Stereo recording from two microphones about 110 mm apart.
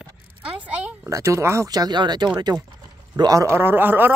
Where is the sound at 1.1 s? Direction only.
25° right (ahead or behind).